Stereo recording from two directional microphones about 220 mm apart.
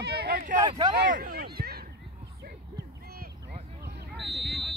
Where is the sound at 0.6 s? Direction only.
20° right (ahead or behind).